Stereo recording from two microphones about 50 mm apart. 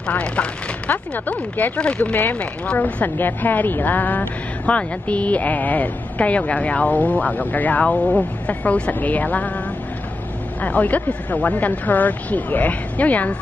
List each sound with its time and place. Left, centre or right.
0.2 s speech: left
2.1 s speech: left
10.6 s speech: left